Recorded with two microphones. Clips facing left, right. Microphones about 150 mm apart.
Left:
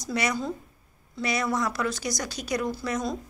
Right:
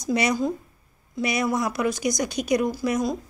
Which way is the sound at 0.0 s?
20° right (ahead or behind).